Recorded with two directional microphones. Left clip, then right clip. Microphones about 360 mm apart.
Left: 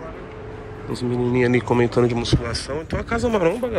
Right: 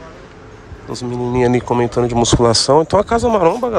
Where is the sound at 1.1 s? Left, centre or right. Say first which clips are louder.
Right 4 dB; centre.